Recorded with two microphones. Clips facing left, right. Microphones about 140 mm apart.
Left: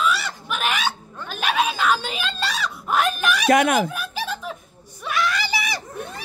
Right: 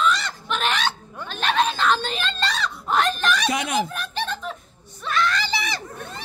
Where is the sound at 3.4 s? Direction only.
55° left (ahead or behind).